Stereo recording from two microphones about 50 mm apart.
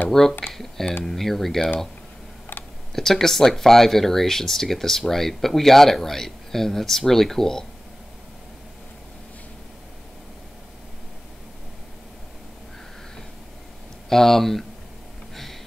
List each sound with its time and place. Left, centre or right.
0.1 s speech: centre
0.5 s a sound: centre
1.0 s speech: centre
2.9 s speech: centre
14.0 s speech: centre